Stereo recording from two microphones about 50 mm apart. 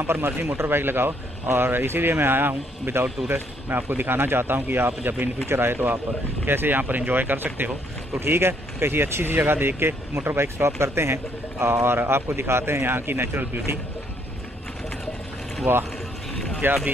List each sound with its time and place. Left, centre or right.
0.0 s speech: right
6.8 s speech: right
8.1 s speech: right
15.7 s speech: right